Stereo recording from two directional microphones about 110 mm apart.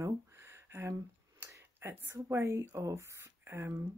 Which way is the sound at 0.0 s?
25° right (ahead or behind).